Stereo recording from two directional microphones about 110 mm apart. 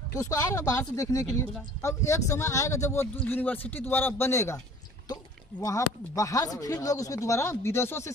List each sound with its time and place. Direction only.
0.1 s speech: 30° left (ahead or behind)
5.0 s speech: 35° left (ahead or behind)